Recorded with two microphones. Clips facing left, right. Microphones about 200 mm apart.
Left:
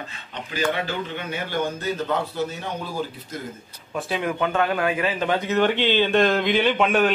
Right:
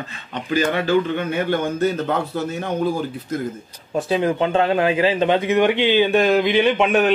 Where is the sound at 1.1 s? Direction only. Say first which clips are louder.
Right 7 dB; 55° right (ahead or behind).